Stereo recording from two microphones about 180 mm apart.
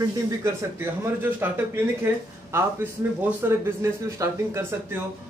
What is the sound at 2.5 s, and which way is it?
A man's voice, 15° right (ahead or behind).